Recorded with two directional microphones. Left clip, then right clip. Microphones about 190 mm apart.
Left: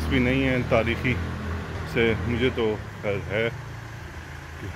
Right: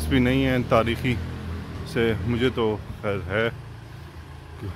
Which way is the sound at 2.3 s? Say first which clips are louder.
Right 1 dB; 35° right (ahead or behind).